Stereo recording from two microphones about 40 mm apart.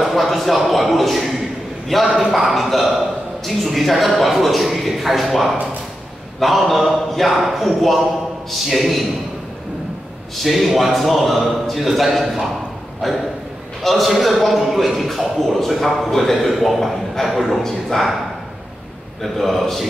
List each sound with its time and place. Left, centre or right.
0.0 s a man's voice: centre
10.3 s a man's voice: centre
19.2 s a man's voice: centre